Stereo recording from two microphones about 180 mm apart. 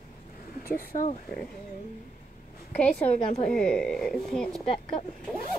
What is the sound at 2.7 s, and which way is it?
Speech, 5° left (ahead or behind).